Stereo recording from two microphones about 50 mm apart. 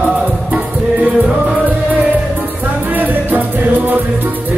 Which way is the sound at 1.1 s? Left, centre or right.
Right.